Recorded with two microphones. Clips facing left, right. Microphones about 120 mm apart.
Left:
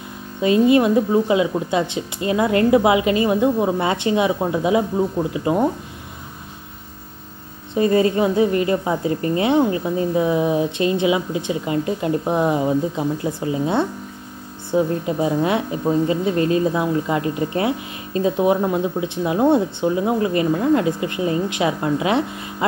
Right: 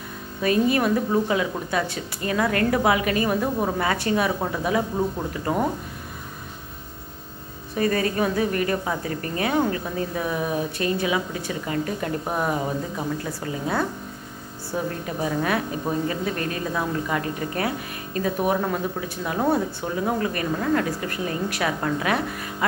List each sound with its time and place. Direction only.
0.4 s a woman's voice: 20° left (ahead or behind)
7.7 s a woman's voice: 25° left (ahead or behind)